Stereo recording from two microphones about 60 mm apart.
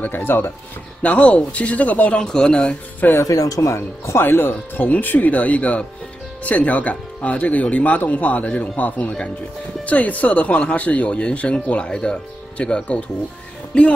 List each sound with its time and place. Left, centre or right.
0.0 s speech: left
1.0 s speech: left
2.2 s speech: centre
3.3 s speech: left
3.7 s speech: left; by 13.0 s centre